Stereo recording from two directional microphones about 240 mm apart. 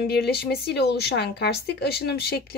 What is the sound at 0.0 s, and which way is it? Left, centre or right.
Speech, left.